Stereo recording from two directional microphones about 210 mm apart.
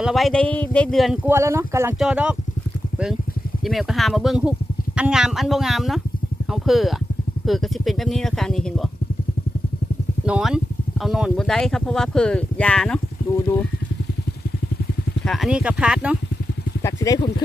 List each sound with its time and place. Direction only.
0.0 s speech: centre (ahead or behind)
3.6 s speech: centre (ahead or behind)
10.2 s speech: 5° right (ahead or behind)
15.2 s speech: centre (ahead or behind)
16.8 s speech: 15° left (ahead or behind)